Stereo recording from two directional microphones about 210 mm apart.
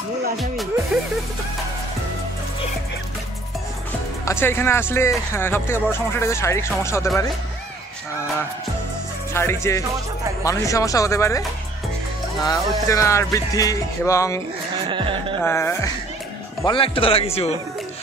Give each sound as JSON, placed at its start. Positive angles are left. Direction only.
{"t": 4.3, "sound": "speech", "side_deg": 10}
{"t": 9.3, "sound": "speech", "side_deg": 10}
{"t": 12.4, "sound": "speech", "side_deg": 15}
{"t": 14.9, "sound": "a sound", "side_deg": -25}
{"t": 15.4, "sound": "speech", "side_deg": 10}
{"t": 16.6, "sound": "speech", "side_deg": 25}